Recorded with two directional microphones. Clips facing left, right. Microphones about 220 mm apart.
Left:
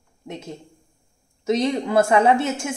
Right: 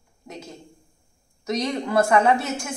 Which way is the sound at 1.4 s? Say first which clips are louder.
Left 4 dB; 25° left (ahead or behind).